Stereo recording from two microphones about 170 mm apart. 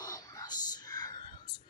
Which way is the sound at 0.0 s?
20° left (ahead or behind).